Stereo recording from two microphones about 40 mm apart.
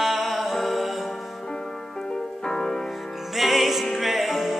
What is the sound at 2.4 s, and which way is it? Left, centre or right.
Music, centre.